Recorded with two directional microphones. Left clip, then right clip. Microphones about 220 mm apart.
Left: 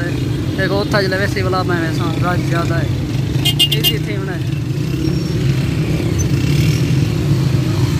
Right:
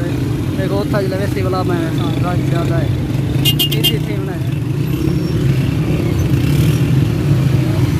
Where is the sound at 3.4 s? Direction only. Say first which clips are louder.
Left 2 dB; 50° right (ahead or behind).